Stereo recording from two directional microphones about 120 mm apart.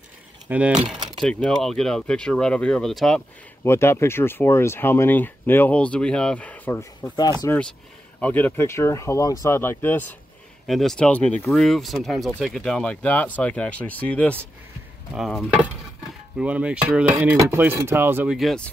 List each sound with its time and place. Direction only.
0.5 s cutlery: 10° right (ahead or behind)
0.7 s keys jangling: 40° right (ahead or behind)
1.2 s speech: 10° left (ahead or behind)
3.6 s speech: 20° left (ahead or behind)
8.2 s speech: 15° left (ahead or behind)
10.7 s speech: 5° left (ahead or behind)
16.3 s cutlery: 10° right (ahead or behind)
18.3 s speech: centre (ahead or behind)